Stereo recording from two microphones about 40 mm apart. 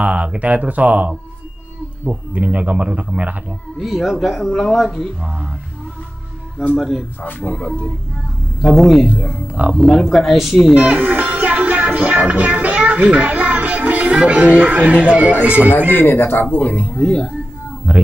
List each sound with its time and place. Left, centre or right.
0.0 s a man's voice: right
3.8 s a woman's voice: centre
5.2 s speech: right
6.8 s speech: centre
7.2 s speech: left
8.6 s speech: centre
9.5 s a man's voice: right
10.1 s a woman's voice: centre
10.8 s speech: right
15.9 s speech: left
16.4 s speech: left
16.9 s speech: centre
17.9 s a man's voice: right